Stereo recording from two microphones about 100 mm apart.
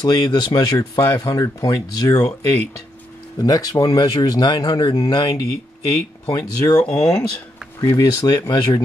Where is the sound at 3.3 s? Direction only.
40° left (ahead or behind).